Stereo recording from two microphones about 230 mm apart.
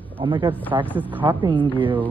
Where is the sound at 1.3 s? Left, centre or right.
Right.